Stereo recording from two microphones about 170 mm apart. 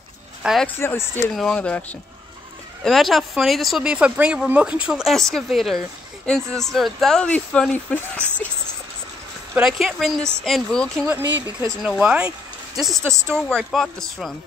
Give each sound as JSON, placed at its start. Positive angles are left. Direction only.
{"t": 0.4, "sound": "speech", "side_deg": -5}
{"t": 0.7, "sound": "speech", "side_deg": 15}
{"t": 1.3, "sound": "speech", "side_deg": 0}
{"t": 9.5, "sound": "speech", "side_deg": -5}
{"t": 13.0, "sound": "speech", "side_deg": -15}
{"t": 13.3, "sound": "speech", "side_deg": 5}